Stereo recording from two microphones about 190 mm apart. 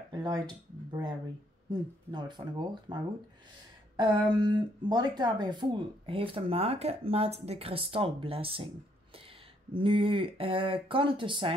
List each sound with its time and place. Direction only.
0.1 s speech: 20° right (ahead or behind)
1.7 s speech: 20° right (ahead or behind)